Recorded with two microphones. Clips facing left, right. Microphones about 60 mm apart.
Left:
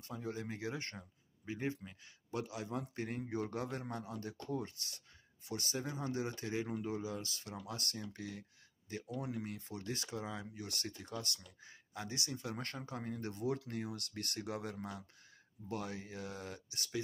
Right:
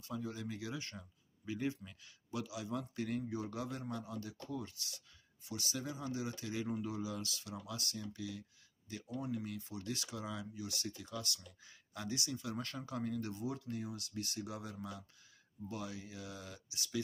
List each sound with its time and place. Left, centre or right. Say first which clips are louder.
0.1 s speech: even; left
2.3 s speech: even; left
3.3 s speech: left 2 dB; left
10.5 s speech: right 1 dB; left
13.3 s speech: left 3 dB; left